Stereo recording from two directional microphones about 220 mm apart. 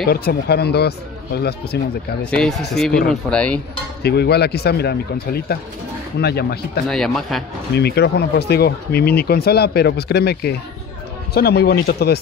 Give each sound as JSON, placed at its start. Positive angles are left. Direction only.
{"t": 0.0, "sound": "speech", "side_deg": 45}
{"t": 2.3, "sound": "speech", "side_deg": 5}
{"t": 4.0, "sound": "speech", "side_deg": 50}
{"t": 6.9, "sound": "speech", "side_deg": 0}
{"t": 7.7, "sound": "speech", "side_deg": 50}